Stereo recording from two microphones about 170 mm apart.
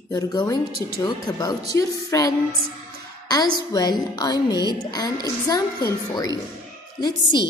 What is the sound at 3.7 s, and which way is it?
A woman's voice, 25° left (ahead or behind).